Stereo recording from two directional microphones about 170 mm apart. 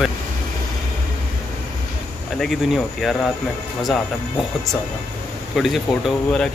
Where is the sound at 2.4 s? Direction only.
Centre (ahead or behind).